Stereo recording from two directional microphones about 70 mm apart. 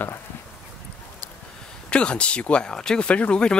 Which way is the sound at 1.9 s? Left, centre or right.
Centre.